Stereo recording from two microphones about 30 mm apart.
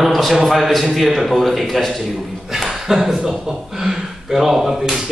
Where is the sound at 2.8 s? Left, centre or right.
Centre.